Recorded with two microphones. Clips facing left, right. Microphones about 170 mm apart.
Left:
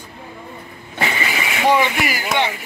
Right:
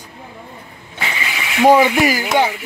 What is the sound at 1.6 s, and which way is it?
Speech, 45° right (ahead or behind).